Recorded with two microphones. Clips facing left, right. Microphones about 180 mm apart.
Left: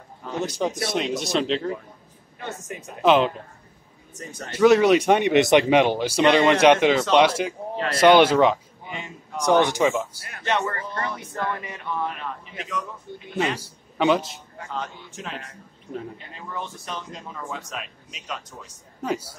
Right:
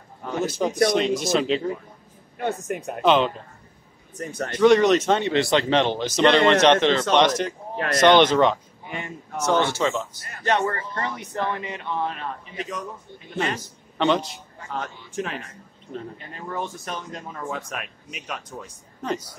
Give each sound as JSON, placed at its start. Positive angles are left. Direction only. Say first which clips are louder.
{"t": 0.6, "sound": "speech", "louder": "right 6 dB", "side_deg": 0}
{"t": 2.3, "sound": "a man's voice", "louder": "right 8 dB", "side_deg": -55}
{"t": 3.0, "sound": "speech", "louder": "left 1 dB", "side_deg": 5}
{"t": 4.2, "sound": "a man's voice", "louder": "right 8 dB", "side_deg": -55}
{"t": 4.5, "sound": "speech", "louder": "even", "side_deg": 5}
{"t": 8.8, "sound": "a sound", "louder": "right 3 dB", "side_deg": -60}
{"t": 9.4, "sound": "speech", "louder": "left 3 dB", "side_deg": 15}
{"t": 10.4, "sound": "speech", "louder": "right 2 dB", "side_deg": -35}
{"t": 12.5, "sound": "a man's voice", "louder": "left 1 dB", "side_deg": -40}
{"t": 13.6, "sound": "speech", "louder": "left 1 dB", "side_deg": 10}
{"t": 14.7, "sound": "a man's voice", "louder": "right 1 dB", "side_deg": -55}
{"t": 16.3, "sound": "speech", "louder": "right 5 dB", "side_deg": -50}